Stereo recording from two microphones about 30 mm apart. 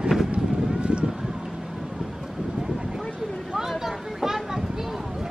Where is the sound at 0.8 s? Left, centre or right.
Right.